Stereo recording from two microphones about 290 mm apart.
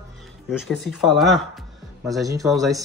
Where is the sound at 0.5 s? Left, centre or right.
Centre.